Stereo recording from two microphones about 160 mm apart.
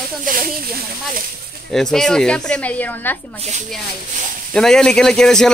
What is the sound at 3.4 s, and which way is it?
Speech, 45° right (ahead or behind).